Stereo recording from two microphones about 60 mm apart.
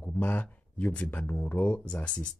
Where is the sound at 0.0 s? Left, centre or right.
Left.